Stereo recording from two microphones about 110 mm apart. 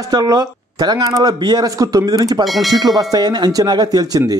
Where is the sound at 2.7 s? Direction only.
35° right (ahead or behind).